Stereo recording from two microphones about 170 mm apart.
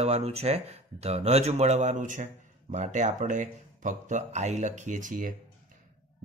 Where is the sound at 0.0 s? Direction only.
40° right (ahead or behind).